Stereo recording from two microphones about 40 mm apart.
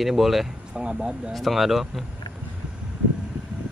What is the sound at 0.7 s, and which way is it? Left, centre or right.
Speech, right.